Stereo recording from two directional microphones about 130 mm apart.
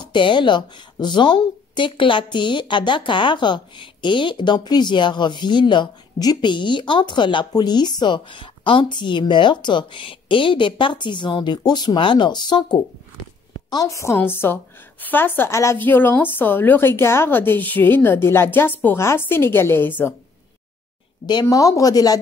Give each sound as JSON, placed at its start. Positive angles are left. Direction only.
{"t": 0.0, "sound": "a woman's voice", "side_deg": 35}
{"t": 21.3, "sound": "speech", "side_deg": 30}